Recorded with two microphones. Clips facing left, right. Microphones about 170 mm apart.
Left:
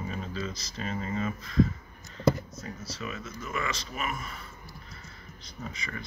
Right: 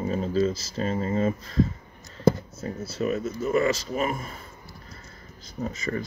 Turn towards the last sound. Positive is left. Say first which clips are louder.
# right 10 dB
turn(degrees=-40)  # may be behind; listen again after turning